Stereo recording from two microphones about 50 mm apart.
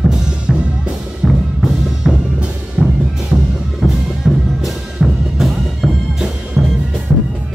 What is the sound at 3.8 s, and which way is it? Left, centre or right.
Music, centre.